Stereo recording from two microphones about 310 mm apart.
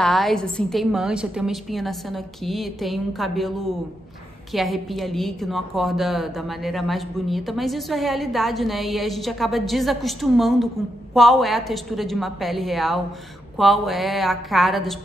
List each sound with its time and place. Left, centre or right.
0.0 s a woman's voice: centre